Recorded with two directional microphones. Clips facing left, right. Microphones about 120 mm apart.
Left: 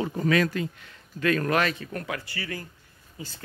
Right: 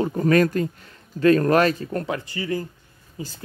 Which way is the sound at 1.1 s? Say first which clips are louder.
Right 8 dB; 35° right (ahead or behind).